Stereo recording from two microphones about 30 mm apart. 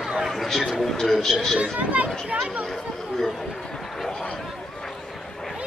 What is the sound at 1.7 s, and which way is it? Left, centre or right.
Speech, right.